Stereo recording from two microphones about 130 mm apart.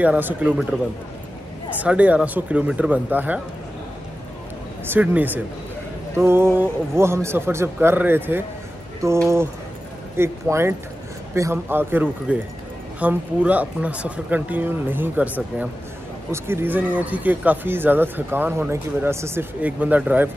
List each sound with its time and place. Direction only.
0.0 s speech: 15° right (ahead or behind)
1.8 s speech: 10° right (ahead or behind)
4.9 s a man's voice: 15° right (ahead or behind)